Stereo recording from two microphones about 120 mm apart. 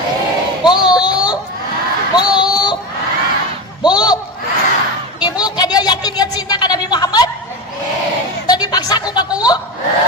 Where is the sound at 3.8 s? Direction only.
35° left (ahead or behind).